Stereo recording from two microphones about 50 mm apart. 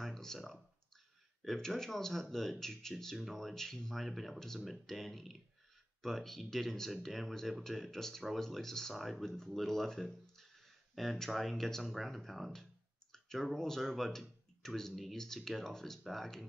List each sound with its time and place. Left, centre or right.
0.0 s clicking: centre
1.4 s speech: centre